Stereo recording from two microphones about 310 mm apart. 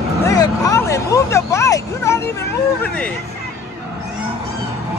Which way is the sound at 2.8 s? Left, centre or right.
Centre.